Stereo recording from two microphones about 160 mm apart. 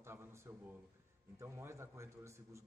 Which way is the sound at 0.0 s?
15° right (ahead or behind).